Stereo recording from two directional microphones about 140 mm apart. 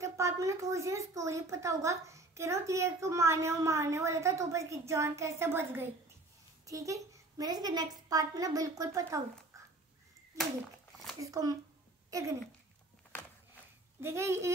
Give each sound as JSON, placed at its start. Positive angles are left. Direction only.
{"t": 0.0, "sound": "a woman's voice", "side_deg": -20}
{"t": 11.1, "sound": "a woman's voice", "side_deg": -25}
{"t": 13.1, "sound": "a sound", "side_deg": 10}
{"t": 14.0, "sound": "speech", "side_deg": -20}